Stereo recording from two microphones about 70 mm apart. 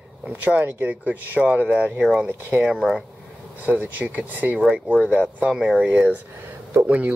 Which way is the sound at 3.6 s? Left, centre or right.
Right.